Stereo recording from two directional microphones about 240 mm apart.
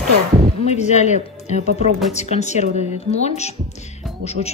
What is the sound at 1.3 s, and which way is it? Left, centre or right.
Music, left.